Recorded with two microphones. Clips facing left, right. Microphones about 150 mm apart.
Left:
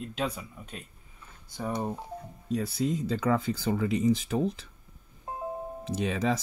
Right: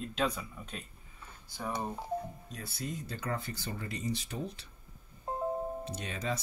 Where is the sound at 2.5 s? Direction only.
90° left.